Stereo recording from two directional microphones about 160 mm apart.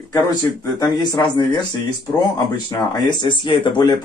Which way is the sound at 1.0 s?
25° left (ahead or behind).